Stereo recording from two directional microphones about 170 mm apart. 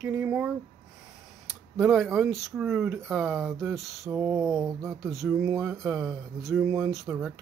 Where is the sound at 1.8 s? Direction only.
5° right (ahead or behind).